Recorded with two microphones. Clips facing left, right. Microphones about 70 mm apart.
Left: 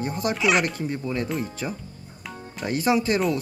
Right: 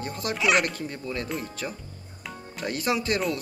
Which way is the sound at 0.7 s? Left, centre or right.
Centre.